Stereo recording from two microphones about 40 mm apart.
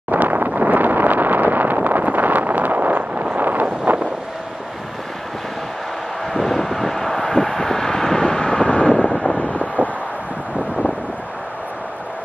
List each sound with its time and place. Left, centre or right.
0.1 s wind noise: right
0.6 s a sound: right
3.8 s wind noise: right
6.3 s vehicle: centre; by 9.7 s left